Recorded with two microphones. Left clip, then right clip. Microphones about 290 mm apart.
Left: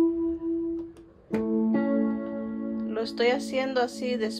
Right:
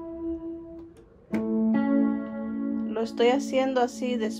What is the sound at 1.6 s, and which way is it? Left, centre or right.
Music, right.